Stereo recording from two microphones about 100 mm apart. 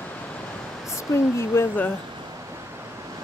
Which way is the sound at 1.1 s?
25° left (ahead or behind).